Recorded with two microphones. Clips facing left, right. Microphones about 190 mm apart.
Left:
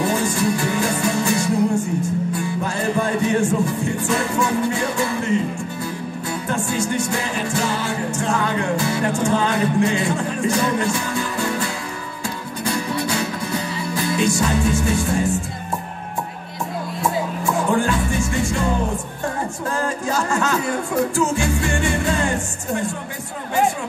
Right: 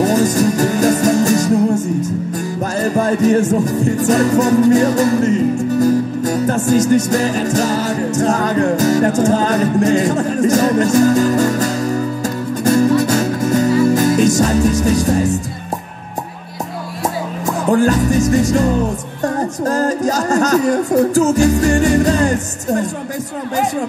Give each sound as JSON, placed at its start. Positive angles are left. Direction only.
{"t": 0.0, "sound": "music", "side_deg": -40}
{"t": 1.8, "sound": "music", "side_deg": -20}
{"t": 2.3, "sound": "music", "side_deg": -40}
{"t": 17.6, "sound": "music", "side_deg": -40}